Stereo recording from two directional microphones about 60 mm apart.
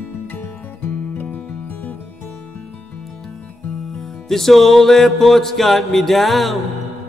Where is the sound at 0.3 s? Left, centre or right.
Left.